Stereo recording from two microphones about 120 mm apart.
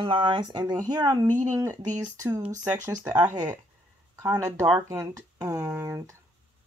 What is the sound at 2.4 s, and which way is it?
Speech, 90° right.